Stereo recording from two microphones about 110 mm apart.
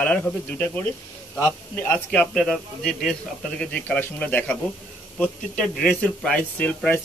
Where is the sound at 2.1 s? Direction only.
5° left (ahead or behind).